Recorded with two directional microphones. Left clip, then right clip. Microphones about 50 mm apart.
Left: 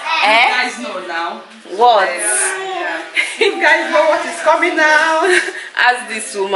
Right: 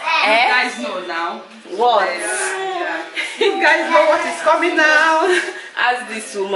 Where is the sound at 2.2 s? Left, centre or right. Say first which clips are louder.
Left 2 dB; centre.